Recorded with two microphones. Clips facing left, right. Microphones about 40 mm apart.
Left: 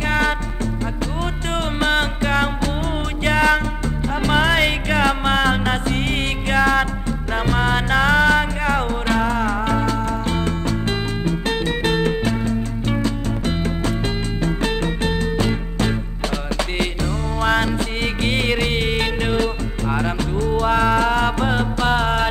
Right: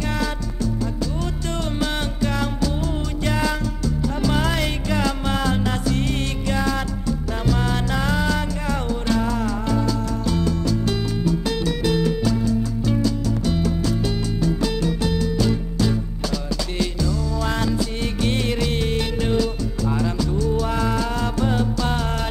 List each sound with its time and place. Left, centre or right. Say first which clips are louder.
1.8 s music: left 7 dB; left